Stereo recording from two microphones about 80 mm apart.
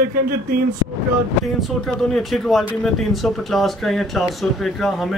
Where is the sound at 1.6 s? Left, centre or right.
Centre.